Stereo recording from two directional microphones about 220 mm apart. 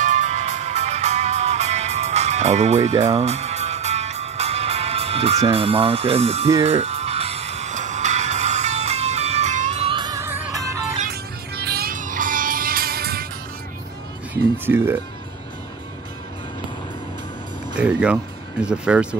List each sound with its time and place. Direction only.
0.0 s music: 35° right (ahead or behind)
5.5 s speech: 25° right (ahead or behind)
6.6 s music: 30° right (ahead or behind); by 11.0 s 15° right (ahead or behind)
11.0 s music: 45° right (ahead or behind)
17.7 s speech: 5° right (ahead or behind)